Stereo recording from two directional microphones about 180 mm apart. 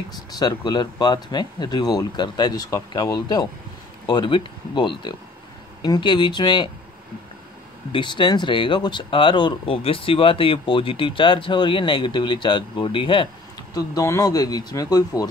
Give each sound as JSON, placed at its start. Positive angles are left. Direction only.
{"t": 0.3, "sound": "speech", "side_deg": 20}
{"t": 7.9, "sound": "speech", "side_deg": 25}
{"t": 13.7, "sound": "speech", "side_deg": 20}